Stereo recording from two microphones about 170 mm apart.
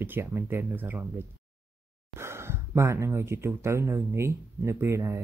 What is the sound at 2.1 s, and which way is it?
Speech, 15° right (ahead or behind).